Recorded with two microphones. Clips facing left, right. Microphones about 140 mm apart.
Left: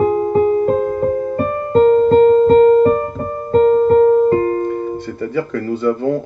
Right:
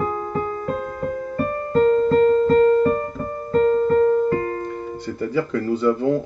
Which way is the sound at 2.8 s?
55° left (ahead or behind).